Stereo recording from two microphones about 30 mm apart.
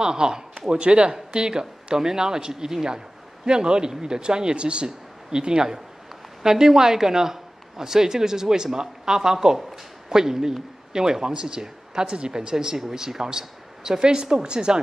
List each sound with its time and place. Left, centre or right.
0.0 s a man's voice: right
0.7 s a man's voice: right
6.4 s a man's voice: centre